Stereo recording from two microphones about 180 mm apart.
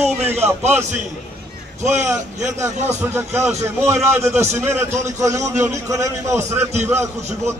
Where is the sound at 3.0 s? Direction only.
15° right (ahead or behind).